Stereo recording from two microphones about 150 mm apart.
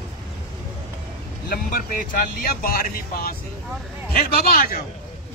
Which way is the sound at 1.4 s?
70° left (ahead or behind).